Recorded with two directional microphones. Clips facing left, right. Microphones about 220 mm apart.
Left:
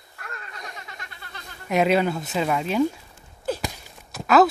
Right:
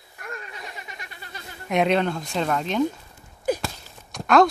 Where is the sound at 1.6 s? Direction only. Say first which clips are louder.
Left 1 dB; 5° left (ahead or behind).